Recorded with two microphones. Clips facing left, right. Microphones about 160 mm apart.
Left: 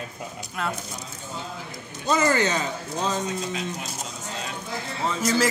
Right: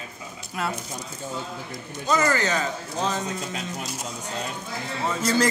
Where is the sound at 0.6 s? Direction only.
5° right (ahead or behind).